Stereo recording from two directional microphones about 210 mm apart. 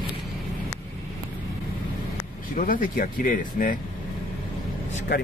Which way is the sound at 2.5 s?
40° left (ahead or behind).